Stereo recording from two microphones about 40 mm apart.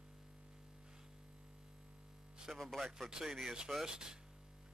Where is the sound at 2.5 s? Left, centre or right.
Centre.